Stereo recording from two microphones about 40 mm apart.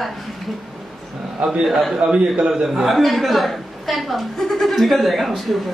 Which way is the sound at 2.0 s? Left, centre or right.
Right.